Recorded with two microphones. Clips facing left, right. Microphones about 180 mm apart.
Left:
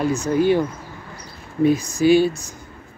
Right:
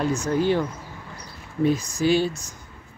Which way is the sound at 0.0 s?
10° left (ahead or behind).